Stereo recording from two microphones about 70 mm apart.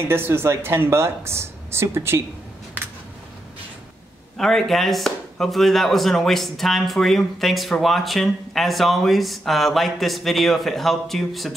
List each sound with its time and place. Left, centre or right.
0.1 s a woman's voice: right
2.8 s a sound: right
4.4 s speech: centre